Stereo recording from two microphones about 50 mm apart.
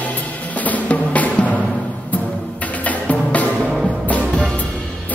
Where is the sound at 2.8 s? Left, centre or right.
Left.